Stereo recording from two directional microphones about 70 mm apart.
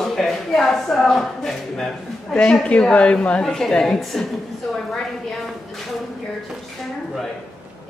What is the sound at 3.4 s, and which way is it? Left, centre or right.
Speech, centre.